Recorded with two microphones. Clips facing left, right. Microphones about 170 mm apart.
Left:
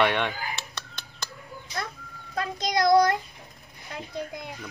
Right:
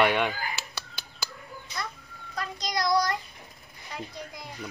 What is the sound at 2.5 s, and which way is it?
Child singing, 55° left (ahead or behind).